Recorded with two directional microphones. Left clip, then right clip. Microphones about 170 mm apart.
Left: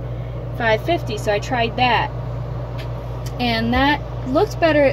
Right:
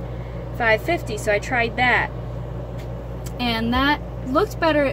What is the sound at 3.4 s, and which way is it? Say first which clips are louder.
A woman's voice: left 3 dB; centre (ahead or behind).